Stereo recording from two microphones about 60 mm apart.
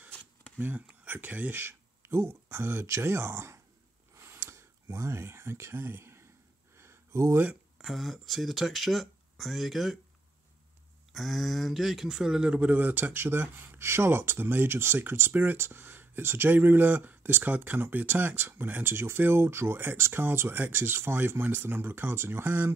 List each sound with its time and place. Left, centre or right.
0.6 s speech: right
4.2 s a sound: right
7.8 s speech: centre
11.1 s speech: centre
12.5 s speech: right
13.2 s speech: right